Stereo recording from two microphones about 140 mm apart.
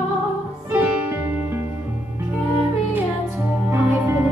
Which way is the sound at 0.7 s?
15° right (ahead or behind).